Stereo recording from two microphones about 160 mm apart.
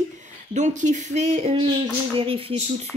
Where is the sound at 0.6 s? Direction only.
50° right (ahead or behind).